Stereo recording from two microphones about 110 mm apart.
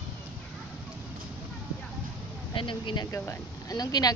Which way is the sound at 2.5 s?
50° left (ahead or behind).